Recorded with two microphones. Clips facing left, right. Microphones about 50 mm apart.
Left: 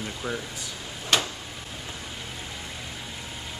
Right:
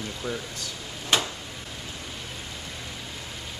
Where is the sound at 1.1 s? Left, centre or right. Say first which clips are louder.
Even; centre.